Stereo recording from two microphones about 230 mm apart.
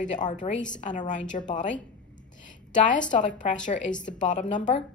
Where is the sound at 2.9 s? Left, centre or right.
Left.